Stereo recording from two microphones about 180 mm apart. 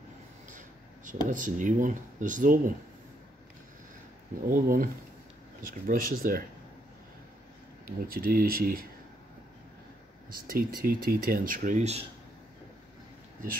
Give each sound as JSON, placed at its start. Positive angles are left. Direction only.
{"t": 0.5, "sound": "a sound", "side_deg": -45}
{"t": 1.3, "sound": "speech", "side_deg": -45}
{"t": 4.5, "sound": "speech", "side_deg": -50}
{"t": 7.8, "sound": "speech", "side_deg": -55}
{"t": 10.4, "sound": "speech", "side_deg": -55}